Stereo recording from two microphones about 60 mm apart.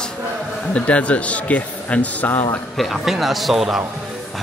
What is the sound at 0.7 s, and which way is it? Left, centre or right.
Speech, left.